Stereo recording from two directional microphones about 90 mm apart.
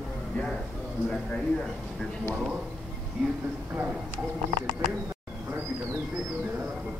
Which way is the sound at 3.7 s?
20° right (ahead or behind).